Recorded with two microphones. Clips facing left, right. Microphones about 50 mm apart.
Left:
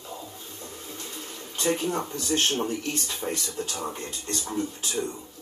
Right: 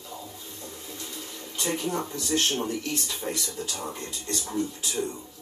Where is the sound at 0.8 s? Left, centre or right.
Left.